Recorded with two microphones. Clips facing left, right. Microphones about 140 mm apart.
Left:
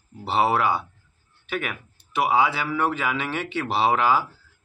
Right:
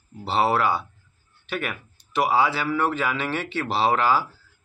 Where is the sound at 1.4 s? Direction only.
5° left (ahead or behind).